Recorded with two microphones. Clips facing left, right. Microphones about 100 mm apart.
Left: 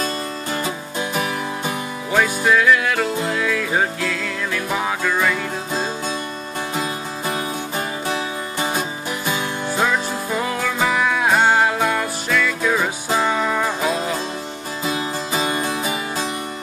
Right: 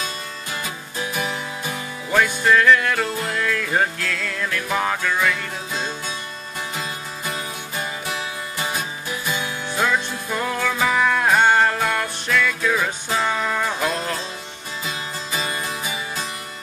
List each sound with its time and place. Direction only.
0.0 s music: 35° left (ahead or behind)
2.1 s music: 5° left (ahead or behind)
6.7 s music: 35° left (ahead or behind)
9.7 s music: 5° left (ahead or behind)
14.9 s music: 30° left (ahead or behind)